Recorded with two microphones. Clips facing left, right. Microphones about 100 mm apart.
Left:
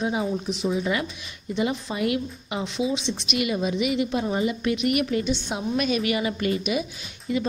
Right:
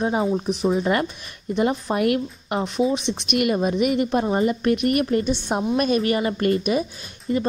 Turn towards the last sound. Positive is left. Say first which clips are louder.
# right 3 dB
turn(degrees=-40)  # may be behind; listen again after turning